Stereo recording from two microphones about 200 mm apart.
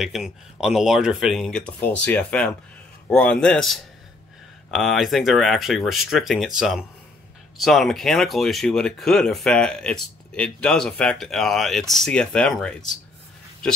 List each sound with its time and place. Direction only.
0.0 s speech: centre (ahead or behind)